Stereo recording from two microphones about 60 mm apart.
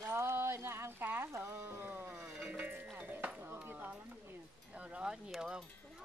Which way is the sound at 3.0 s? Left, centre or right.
Right.